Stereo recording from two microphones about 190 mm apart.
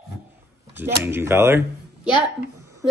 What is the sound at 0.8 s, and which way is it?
Speech, 10° right (ahead or behind).